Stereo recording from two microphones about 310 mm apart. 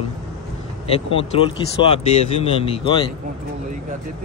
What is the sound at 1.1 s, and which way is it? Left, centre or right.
Speech, centre.